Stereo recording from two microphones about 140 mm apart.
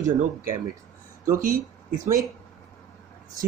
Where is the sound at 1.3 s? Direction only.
65° right (ahead or behind).